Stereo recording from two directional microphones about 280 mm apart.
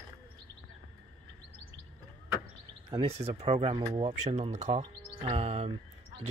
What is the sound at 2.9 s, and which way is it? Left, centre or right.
Speech, right.